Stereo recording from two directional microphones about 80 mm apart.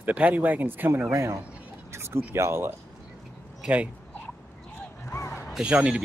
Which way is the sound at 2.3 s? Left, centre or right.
Right.